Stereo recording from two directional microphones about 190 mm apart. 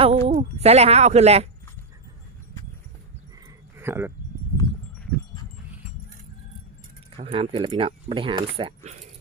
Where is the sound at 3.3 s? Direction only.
15° right (ahead or behind).